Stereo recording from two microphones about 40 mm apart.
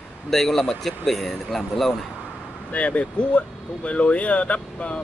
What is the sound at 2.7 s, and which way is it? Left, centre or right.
Speech, left.